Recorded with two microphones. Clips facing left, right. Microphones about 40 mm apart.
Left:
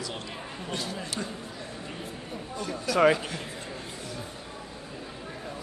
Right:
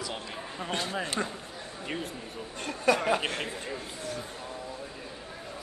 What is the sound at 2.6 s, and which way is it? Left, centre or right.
Speech, right.